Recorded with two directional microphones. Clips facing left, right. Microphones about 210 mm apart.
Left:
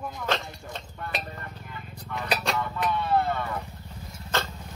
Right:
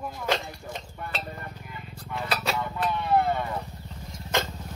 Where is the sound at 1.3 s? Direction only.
10° right (ahead or behind).